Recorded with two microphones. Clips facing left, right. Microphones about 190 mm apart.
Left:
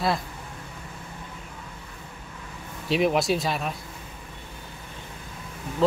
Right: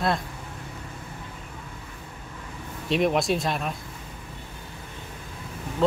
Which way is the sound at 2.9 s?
Centre (ahead or behind).